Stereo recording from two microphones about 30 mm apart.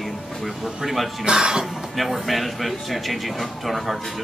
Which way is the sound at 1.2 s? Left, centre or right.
Right.